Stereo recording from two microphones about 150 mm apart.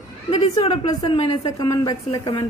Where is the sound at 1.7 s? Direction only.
25° left (ahead or behind).